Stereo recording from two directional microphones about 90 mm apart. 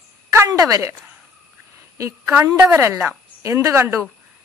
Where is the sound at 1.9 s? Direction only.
35° right (ahead or behind).